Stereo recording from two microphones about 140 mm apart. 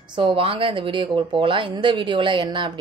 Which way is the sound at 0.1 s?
35° right (ahead or behind).